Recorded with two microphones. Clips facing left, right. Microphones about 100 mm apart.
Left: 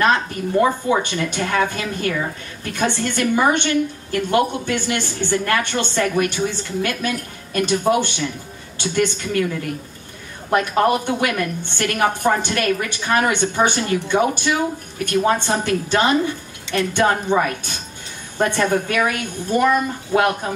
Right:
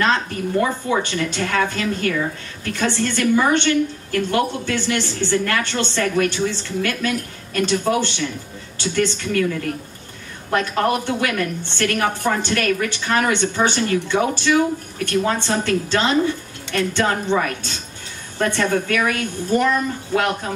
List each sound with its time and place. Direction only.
0.0 s a woman's voice: 20° left (ahead or behind)